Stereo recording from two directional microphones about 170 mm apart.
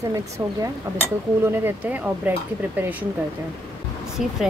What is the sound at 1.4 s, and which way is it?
Speech, 15° right (ahead or behind).